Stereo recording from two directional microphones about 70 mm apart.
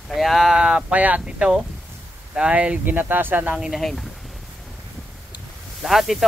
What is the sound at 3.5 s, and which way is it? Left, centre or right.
Speech, centre.